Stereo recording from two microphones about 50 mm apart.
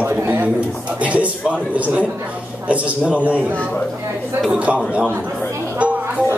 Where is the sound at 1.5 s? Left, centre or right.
Right.